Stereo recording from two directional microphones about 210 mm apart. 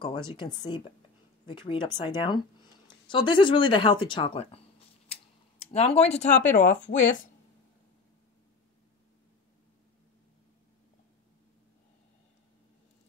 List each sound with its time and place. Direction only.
0.0 s speech: 20° left (ahead or behind); by 7.2 s 40° left (ahead or behind)